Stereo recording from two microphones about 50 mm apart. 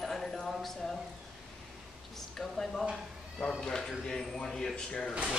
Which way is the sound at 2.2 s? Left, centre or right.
Centre.